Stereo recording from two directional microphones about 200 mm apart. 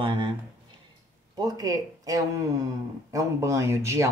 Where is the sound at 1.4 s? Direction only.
20° right (ahead or behind).